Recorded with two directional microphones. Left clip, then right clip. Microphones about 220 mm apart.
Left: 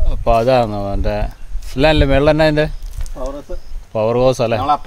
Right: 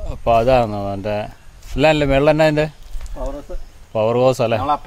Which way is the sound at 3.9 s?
Centre (ahead or behind).